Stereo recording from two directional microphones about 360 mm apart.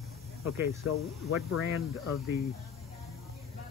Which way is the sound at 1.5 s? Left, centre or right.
Left.